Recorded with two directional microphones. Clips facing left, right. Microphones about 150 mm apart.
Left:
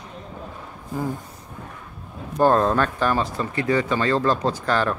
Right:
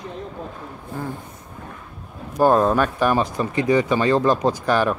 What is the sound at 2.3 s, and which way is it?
Speech, 10° right (ahead or behind).